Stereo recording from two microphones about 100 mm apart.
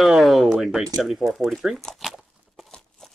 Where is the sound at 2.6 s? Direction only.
5° left (ahead or behind).